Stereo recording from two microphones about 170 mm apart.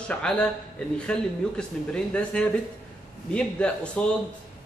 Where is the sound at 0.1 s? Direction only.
5° left (ahead or behind).